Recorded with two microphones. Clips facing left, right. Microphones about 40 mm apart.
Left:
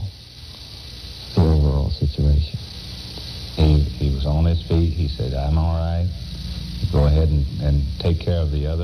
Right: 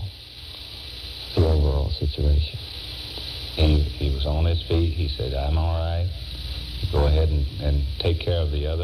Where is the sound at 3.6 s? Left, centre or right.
Right.